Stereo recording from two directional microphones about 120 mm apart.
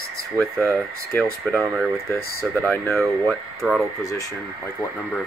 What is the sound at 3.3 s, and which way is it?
Speech, centre (ahead or behind).